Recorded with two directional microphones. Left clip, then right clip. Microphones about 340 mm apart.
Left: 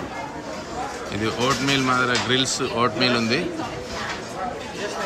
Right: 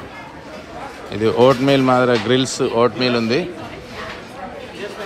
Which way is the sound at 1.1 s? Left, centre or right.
Centre.